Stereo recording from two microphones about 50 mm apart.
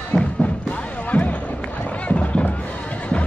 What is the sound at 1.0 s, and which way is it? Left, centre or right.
Basketball bounce, left.